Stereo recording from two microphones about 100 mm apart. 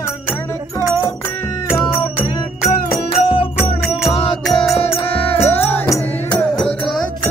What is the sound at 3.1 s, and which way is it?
Music, 65° left (ahead or behind).